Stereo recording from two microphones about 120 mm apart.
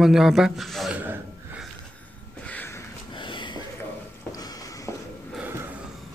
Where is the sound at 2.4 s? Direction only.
15° left (ahead or behind).